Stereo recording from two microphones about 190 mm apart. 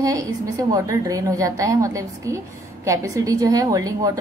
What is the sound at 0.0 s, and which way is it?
A woman's voice, 20° right (ahead or behind).